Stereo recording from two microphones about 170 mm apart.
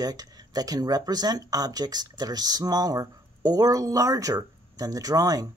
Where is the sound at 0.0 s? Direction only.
20° right (ahead or behind).